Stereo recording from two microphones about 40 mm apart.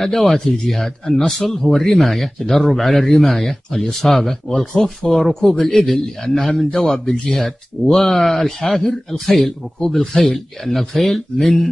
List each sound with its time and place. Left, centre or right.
0.0 s a man's voice: centre
1.6 s a man's voice: centre
5.6 s a man's voice: centre